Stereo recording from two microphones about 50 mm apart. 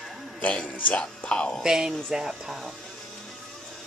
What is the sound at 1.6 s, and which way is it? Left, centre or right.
Speech, centre.